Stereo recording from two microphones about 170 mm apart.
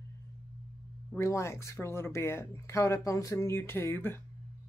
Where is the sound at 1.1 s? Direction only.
15° left (ahead or behind).